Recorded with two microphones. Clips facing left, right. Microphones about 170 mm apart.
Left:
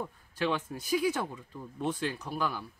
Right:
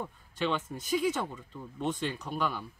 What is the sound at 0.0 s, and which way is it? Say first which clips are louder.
Speech: left 1 dB; 10° left (ahead or behind).